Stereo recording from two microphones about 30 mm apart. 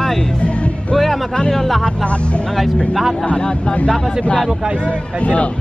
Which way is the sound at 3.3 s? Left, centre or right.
Left.